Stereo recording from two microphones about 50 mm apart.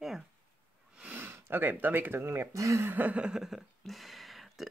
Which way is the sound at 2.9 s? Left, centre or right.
Right.